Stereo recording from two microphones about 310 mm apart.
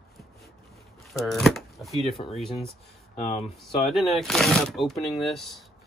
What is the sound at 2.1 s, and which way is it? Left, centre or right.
Speech, centre.